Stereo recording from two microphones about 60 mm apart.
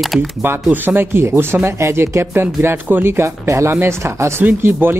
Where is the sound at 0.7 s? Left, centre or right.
Right.